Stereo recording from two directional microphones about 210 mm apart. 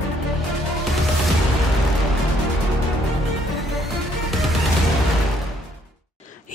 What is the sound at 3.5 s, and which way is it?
Music, centre (ahead or behind).